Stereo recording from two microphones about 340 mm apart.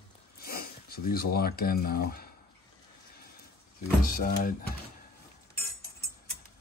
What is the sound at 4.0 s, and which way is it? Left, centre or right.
Speech, left.